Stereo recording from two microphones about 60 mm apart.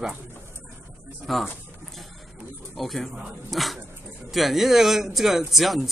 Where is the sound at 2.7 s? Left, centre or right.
Centre.